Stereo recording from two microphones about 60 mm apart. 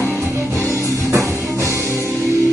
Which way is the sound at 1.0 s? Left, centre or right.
Right.